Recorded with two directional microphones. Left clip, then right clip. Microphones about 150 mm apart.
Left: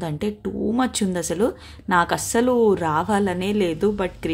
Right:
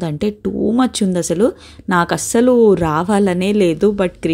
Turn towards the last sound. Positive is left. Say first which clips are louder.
# right 7 dB
turn(degrees=-35)  # may be behind; listen again after turning